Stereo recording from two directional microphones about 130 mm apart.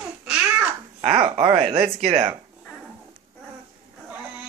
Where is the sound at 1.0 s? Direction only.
50° right (ahead or behind).